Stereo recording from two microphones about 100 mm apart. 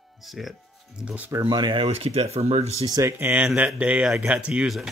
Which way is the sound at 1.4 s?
50° right (ahead or behind).